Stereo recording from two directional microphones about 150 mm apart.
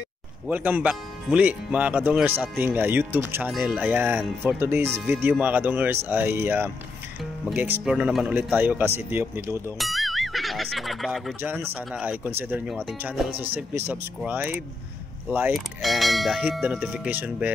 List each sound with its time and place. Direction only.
0.5 s speech: 10° right (ahead or behind)
9.8 s speech: centre (ahead or behind)
11.4 s speech: 10° right (ahead or behind)
13.0 s bell: 5° right (ahead or behind)
13.4 s speech: 10° right (ahead or behind)
15.5 s bell: centre (ahead or behind)